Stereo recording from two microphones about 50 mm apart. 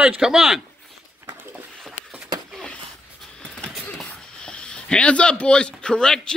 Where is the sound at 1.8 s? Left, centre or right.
Centre.